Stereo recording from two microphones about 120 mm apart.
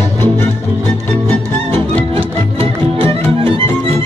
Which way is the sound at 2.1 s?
50° right (ahead or behind).